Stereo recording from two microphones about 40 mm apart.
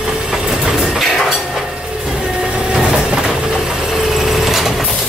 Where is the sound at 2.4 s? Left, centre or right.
Centre.